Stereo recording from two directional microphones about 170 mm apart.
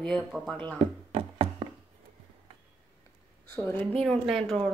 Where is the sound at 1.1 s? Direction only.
30° right (ahead or behind).